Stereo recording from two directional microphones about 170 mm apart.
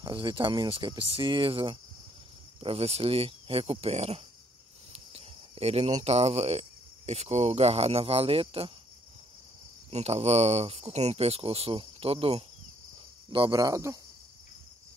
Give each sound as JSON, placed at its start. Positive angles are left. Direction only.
{"t": 0.0, "sound": "speech", "side_deg": -30}
{"t": 4.9, "sound": "cricket", "side_deg": -35}
{"t": 6.0, "sound": "speech", "side_deg": -40}
{"t": 9.8, "sound": "speech", "side_deg": -40}